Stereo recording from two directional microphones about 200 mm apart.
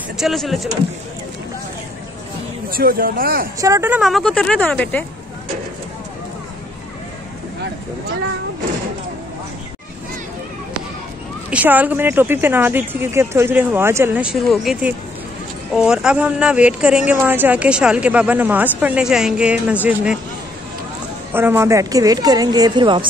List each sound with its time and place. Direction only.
0.2 s speech: centre (ahead or behind)
2.7 s speech: 45° right (ahead or behind)
3.5 s speech: 15° right (ahead or behind); by 5.0 s 5° left (ahead or behind)
11.5 s speech: 10° right (ahead or behind)
21.3 s a woman's voice: 10° right (ahead or behind)